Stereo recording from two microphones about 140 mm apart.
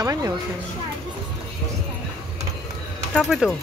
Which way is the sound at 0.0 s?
25° right (ahead or behind).